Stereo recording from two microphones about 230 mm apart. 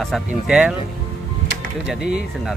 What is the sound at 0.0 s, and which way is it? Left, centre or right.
Speech, centre.